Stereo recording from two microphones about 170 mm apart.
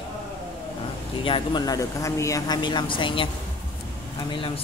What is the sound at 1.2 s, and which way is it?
A man's voice, 30° left (ahead or behind).